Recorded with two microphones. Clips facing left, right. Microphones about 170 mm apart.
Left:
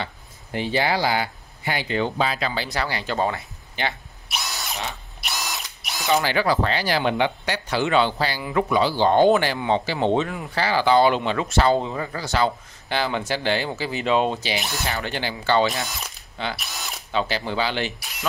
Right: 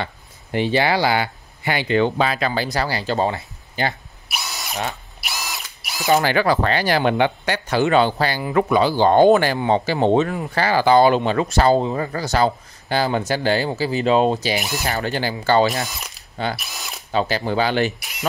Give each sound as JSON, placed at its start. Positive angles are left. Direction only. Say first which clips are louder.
{"t": 0.0, "sound": "speech", "louder": "right 3 dB", "side_deg": -70}
{"t": 4.3, "sound": "drill", "louder": "right 1 dB", "side_deg": 0}
{"t": 6.2, "sound": "speech", "louder": "right 3 dB", "side_deg": -55}
{"t": 16.5, "sound": "speech", "louder": "even", "side_deg": 0}
{"t": 17.1, "sound": "speech", "louder": "right 4 dB", "side_deg": -40}